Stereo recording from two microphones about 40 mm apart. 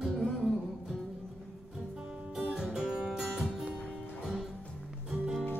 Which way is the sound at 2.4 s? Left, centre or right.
Centre.